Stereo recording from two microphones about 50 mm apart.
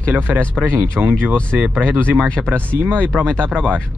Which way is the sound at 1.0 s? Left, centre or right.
Right.